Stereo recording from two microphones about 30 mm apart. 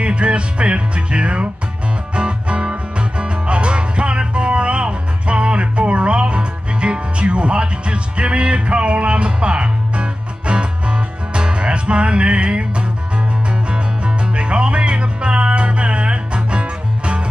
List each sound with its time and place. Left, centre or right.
0.0 s music: right